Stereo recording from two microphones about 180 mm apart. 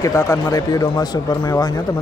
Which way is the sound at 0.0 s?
20° left (ahead or behind).